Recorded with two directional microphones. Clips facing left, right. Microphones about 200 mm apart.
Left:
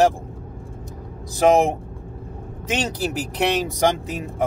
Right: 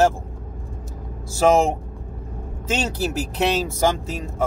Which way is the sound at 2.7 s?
15° left (ahead or behind).